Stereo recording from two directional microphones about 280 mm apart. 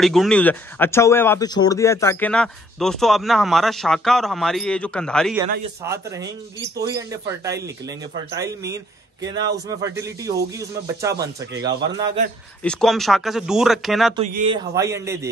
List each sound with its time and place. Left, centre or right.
0.0 s speech: centre
5.9 s a man's voice: centre
12.6 s speech: centre
14.1 s speech: right
14.7 s a man's voice: centre